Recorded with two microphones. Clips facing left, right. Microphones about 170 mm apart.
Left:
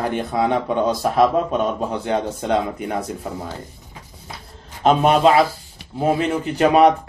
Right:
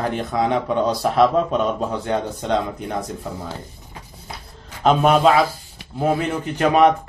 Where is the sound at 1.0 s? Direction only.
5° left (ahead or behind).